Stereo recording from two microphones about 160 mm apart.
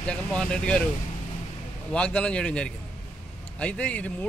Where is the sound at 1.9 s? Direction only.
5° left (ahead or behind).